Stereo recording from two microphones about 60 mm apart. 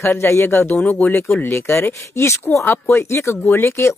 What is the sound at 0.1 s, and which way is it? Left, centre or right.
Speech, left.